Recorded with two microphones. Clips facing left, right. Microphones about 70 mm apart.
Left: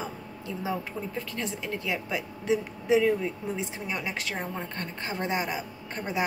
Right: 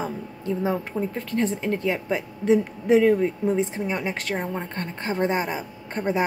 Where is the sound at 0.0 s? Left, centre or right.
Right.